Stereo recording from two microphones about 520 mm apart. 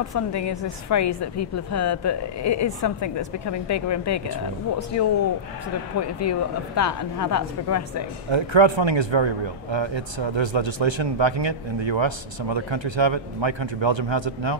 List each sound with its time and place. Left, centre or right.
0.3 s a woman's voice: left
8.3 s speech: right